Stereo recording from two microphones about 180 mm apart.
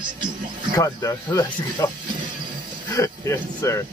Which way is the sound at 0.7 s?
20° left (ahead or behind).